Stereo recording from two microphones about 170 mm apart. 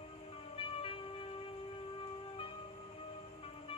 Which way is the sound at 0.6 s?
35° left (ahead or behind).